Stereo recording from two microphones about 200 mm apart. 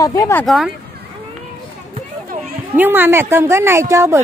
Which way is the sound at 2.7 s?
10° right (ahead or behind).